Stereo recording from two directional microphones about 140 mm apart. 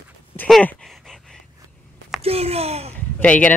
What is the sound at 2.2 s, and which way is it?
Speech, 45° right (ahead or behind).